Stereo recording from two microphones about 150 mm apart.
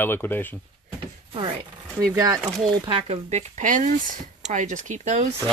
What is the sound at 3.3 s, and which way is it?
Speech, 55° right (ahead or behind).